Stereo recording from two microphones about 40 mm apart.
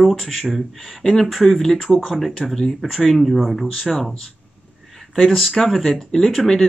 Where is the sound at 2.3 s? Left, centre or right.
Centre.